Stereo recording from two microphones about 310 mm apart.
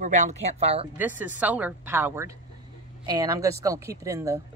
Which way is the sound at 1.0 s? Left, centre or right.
Centre.